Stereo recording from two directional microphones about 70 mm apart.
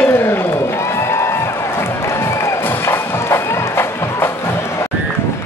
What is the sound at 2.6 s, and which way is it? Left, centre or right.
Music, left.